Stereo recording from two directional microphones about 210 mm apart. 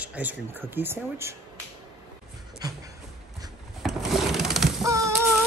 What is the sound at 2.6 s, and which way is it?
Speech, 20° right (ahead or behind).